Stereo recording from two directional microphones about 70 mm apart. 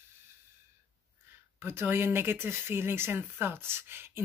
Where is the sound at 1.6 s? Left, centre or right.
Right.